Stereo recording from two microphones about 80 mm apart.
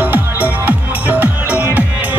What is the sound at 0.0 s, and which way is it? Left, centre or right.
Music, right.